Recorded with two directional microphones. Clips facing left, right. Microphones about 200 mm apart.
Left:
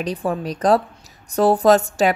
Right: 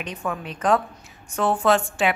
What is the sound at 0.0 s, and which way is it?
Speech, 35° left (ahead or behind).